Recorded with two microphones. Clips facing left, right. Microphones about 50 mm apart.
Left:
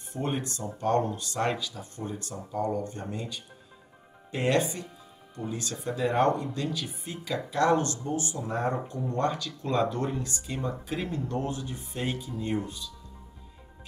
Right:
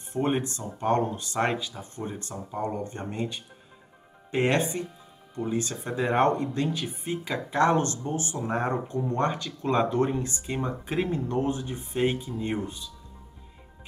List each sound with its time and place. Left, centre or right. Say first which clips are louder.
0.1 s speech: right 5 dB; right